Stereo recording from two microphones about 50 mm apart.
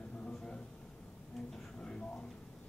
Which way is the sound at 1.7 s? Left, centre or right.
Centre.